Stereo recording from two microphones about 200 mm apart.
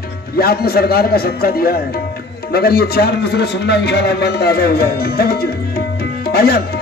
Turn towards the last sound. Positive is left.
turn(degrees=50)  # may be behind; listen again after turning